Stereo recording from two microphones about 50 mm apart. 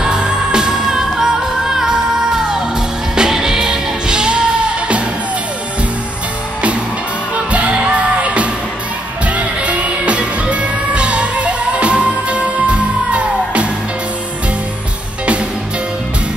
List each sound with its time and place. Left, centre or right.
0.0 s music: centre
7.5 s music: right